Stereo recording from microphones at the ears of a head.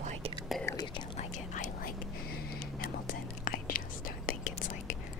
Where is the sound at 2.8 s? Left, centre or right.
Left.